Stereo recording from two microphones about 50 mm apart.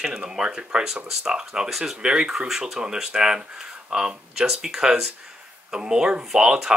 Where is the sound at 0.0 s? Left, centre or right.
Centre.